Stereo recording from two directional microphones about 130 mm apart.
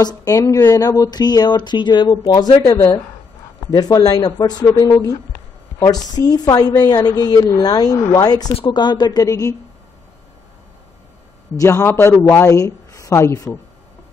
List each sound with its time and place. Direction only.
0.0 s a woman's voice: 30° left (ahead or behind)
11.5 s a woman's voice: 25° left (ahead or behind)